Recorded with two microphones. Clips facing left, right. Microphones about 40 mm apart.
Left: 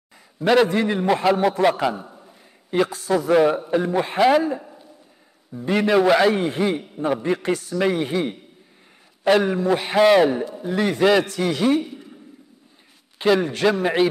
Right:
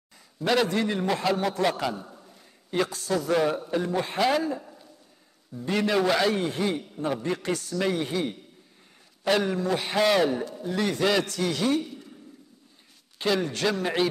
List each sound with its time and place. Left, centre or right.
0.4 s a man's voice: centre
13.2 s a man's voice: centre